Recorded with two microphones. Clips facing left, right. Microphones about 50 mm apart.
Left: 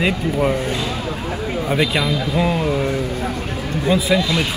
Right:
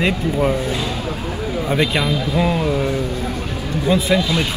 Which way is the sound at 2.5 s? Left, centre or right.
Left.